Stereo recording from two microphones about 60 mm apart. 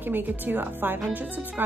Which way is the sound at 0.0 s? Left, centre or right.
Right.